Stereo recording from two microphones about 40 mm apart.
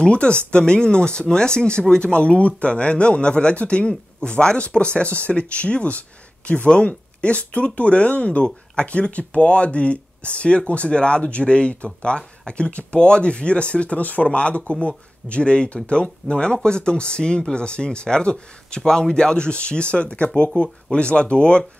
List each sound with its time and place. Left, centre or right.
0.0 s speech: left